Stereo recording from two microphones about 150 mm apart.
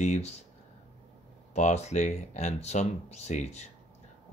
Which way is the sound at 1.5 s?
50° left (ahead or behind).